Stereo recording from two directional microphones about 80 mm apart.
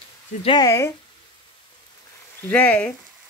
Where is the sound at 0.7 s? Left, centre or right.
Left.